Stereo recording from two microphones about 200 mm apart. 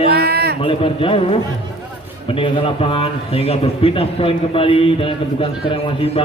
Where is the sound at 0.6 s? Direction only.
25° left (ahead or behind).